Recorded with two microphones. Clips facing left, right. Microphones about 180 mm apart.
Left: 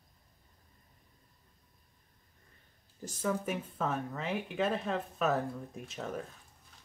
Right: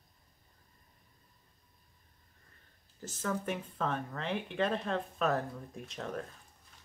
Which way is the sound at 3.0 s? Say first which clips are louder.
Left 2 dB; 10° left (ahead or behind).